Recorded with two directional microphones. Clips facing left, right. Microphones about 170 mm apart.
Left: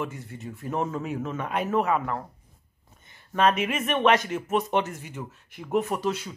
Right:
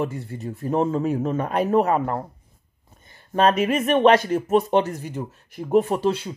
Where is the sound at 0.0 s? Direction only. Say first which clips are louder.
Right 6 dB; 35° right (ahead or behind).